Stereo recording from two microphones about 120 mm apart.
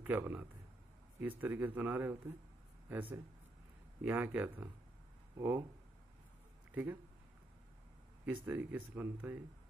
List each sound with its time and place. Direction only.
0.0 s a man's voice: 15° right (ahead or behind)
6.7 s speech: 15° right (ahead or behind)
8.5 s speech: 15° right (ahead or behind)